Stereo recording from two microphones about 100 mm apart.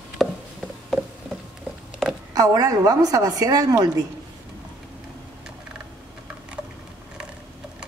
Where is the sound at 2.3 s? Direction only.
35° right (ahead or behind).